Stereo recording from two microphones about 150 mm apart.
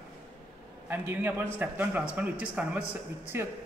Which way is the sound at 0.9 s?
15° right (ahead or behind).